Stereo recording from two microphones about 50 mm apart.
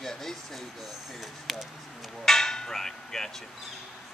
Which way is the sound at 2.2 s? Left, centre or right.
Centre.